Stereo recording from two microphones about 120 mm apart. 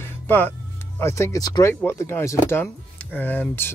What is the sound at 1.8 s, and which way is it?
Speech, 20° left (ahead or behind).